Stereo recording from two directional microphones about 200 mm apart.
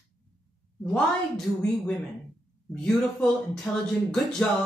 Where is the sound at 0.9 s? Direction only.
5° left (ahead or behind).